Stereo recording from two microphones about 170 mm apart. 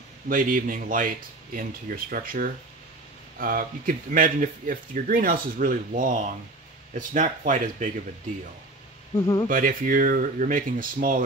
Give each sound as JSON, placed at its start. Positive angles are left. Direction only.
{"t": 0.3, "sound": "speech", "side_deg": -55}
{"t": 9.1, "sound": "speech", "side_deg": 20}
{"t": 9.5, "sound": "speech", "side_deg": -55}